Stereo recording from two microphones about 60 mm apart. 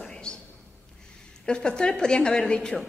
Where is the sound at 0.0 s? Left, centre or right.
Centre.